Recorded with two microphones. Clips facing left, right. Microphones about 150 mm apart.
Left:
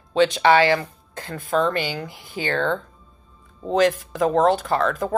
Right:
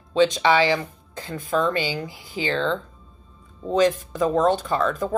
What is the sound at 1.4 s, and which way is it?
Speech, 55° left (ahead or behind).